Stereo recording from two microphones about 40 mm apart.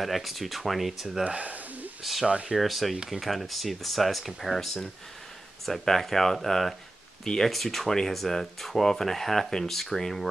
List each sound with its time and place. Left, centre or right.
0.0 s speech: centre
1.2 s a sound: right
2.2 s speech: right
2.5 s speech: centre